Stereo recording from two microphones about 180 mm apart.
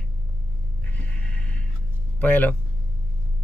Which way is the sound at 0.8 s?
10° left (ahead or behind).